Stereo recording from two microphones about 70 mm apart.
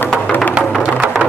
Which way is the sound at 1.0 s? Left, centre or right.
Centre.